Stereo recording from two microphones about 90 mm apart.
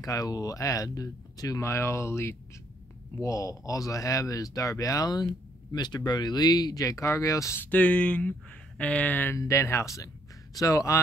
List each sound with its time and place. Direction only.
0.0 s speech: 40° left (ahead or behind)
7.7 s speech: 15° left (ahead or behind)
9.4 s speech: 35° left (ahead or behind)